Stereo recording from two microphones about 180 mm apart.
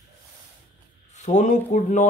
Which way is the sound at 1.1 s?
40° left (ahead or behind).